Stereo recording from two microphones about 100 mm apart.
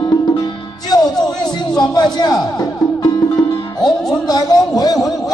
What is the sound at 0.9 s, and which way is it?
Music, 40° left (ahead or behind).